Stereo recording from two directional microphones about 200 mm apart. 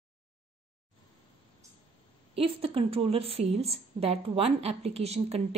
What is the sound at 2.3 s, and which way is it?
A woman's voice, 30° right (ahead or behind).